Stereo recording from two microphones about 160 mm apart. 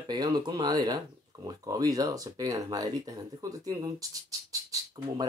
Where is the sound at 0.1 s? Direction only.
25° right (ahead or behind).